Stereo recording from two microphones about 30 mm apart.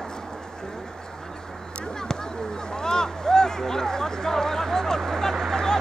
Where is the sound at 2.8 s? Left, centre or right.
Left.